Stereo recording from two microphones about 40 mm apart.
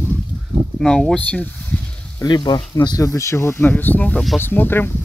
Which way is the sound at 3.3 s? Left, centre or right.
Left.